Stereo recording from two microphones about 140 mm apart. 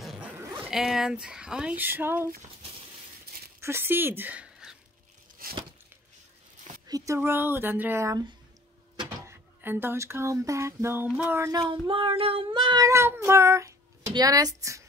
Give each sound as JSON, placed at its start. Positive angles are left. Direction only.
{"t": 0.0, "sound": "dog", "side_deg": 0}
{"t": 0.7, "sound": "speech", "side_deg": 0}
{"t": 3.6, "sound": "a woman's voice", "side_deg": -15}
{"t": 6.9, "sound": "speech", "side_deg": -20}
{"t": 9.2, "sound": "speech", "side_deg": -15}
{"t": 11.9, "sound": "cat", "side_deg": -40}